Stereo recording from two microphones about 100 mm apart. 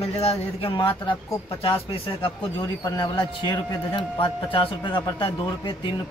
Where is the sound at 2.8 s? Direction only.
45° left (ahead or behind).